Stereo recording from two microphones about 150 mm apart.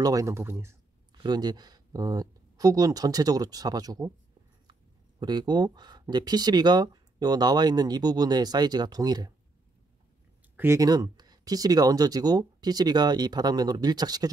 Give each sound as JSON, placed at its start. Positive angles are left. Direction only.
{"t": 0.0, "sound": "speech", "side_deg": -20}
{"t": 1.1, "sound": "speech", "side_deg": -30}
{"t": 5.2, "sound": "speech", "side_deg": -30}
{"t": 10.5, "sound": "speech", "side_deg": -15}